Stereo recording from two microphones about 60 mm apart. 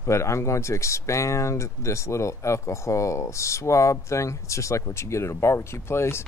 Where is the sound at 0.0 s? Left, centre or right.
Left.